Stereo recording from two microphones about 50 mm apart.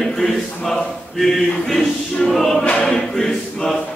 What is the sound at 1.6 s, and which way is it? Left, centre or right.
Choir, centre.